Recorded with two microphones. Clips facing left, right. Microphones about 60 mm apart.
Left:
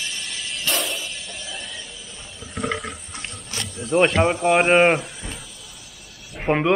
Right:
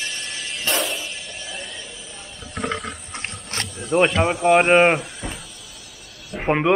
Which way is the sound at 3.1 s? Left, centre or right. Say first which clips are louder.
Right 3 dB; right.